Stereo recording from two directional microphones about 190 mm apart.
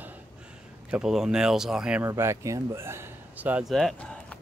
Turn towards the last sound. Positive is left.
turn(degrees=5)  # may be behind; listen again after turning